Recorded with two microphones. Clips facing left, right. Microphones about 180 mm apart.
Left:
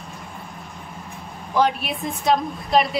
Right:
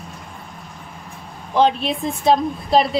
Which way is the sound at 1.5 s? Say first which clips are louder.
Right 4 dB; 25° right (ahead or behind).